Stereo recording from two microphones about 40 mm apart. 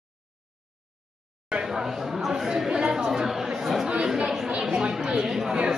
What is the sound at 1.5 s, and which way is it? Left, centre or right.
Speech, right.